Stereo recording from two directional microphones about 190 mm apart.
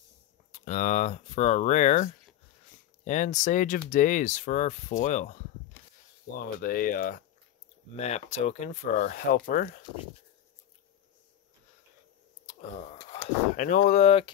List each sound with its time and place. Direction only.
0.5 s speech: 40° left (ahead or behind)
3.1 s speech: 40° left (ahead or behind)
6.3 s speech: 50° left (ahead or behind)
7.9 s speech: 35° left (ahead or behind)
8.6 s speech: 50° left (ahead or behind)
12.4 s a sound: 35° left (ahead or behind)
13.6 s speech: 45° left (ahead or behind)